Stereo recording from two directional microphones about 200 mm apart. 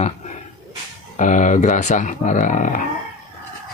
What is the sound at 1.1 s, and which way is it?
Speech, 40° left (ahead or behind).